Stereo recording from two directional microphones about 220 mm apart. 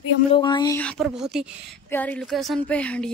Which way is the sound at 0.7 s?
5° left (ahead or behind).